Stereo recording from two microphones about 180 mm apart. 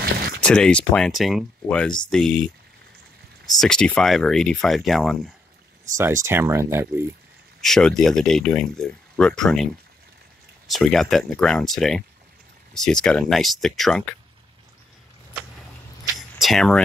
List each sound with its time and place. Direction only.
0.0 s a sound: 60° right (ahead or behind)
0.4 s speech: 5° left (ahead or behind)
5.9 s speech: 15° right (ahead or behind)
7.6 s speech: 5° left (ahead or behind)
10.7 s speech: centre (ahead or behind)
16.2 s speech: centre (ahead or behind)